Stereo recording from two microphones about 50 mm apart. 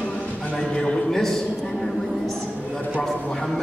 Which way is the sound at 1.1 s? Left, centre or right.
Centre.